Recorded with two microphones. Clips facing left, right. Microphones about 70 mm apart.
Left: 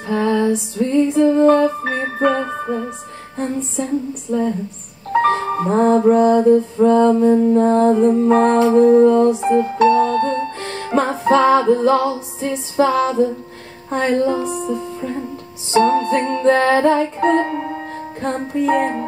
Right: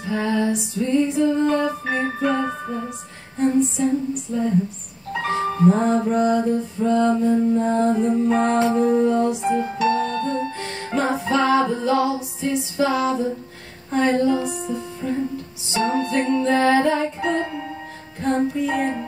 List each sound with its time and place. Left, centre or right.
0.1 s music: left
1.6 s music: left
3.3 s music: left
5.9 s music: left
14.2 s music: left